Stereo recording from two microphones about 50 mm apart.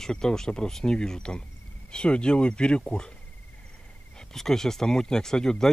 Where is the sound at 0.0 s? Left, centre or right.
Centre.